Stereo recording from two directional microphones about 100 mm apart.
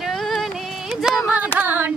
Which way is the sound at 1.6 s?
20° right (ahead or behind).